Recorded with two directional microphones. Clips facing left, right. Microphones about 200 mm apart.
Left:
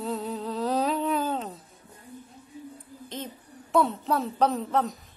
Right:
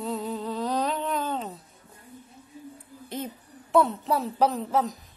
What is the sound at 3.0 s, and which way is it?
A woman's voice, 10° right (ahead or behind).